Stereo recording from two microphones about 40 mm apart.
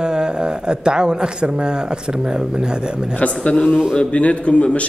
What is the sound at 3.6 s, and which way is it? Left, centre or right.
Speech, right.